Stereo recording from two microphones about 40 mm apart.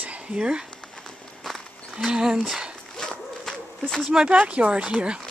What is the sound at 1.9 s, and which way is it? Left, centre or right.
Speech, centre.